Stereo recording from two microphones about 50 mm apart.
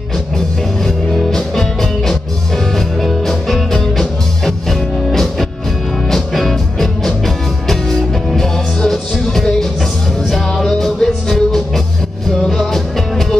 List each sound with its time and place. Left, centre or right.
0.8 s music: centre